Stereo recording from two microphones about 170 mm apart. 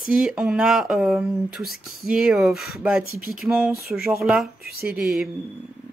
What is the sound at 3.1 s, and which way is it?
Speech, 60° right (ahead or behind).